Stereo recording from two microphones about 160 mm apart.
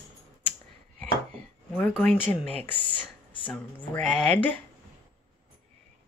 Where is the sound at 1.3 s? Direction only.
10° left (ahead or behind).